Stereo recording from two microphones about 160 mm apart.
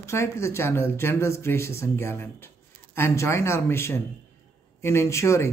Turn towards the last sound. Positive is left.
turn(degrees=15)  # may be behind; listen again after turning